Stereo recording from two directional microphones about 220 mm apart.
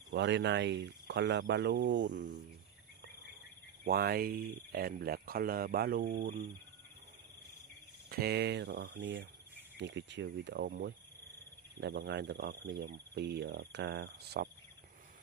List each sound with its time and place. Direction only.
0.1 s speech: 50° right (ahead or behind)
3.8 s speech: 45° right (ahead or behind)
8.1 s speech: 45° right (ahead or behind)
11.8 s speech: 50° right (ahead or behind)